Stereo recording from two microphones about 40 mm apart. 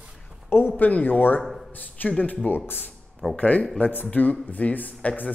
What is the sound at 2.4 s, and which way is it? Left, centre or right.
Speech, left.